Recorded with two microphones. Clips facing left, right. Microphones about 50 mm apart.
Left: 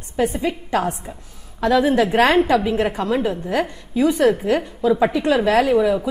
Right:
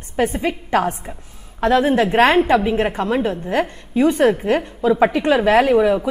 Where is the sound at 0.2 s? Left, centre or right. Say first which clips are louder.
Right 1 dB; right.